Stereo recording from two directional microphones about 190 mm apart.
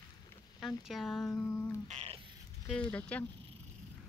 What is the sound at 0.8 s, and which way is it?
Speech, centre (ahead or behind).